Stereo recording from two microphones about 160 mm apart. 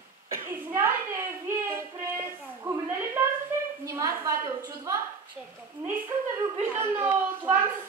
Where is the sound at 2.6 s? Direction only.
15° right (ahead or behind).